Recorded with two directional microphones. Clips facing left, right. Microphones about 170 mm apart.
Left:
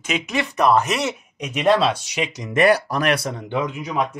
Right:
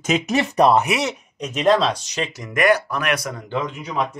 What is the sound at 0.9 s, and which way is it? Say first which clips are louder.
Speech: right 1 dB; centre (ahead or behind).